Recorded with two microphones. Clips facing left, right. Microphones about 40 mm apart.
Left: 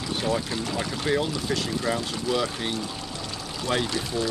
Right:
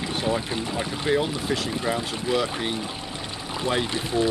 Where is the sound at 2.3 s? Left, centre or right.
Centre.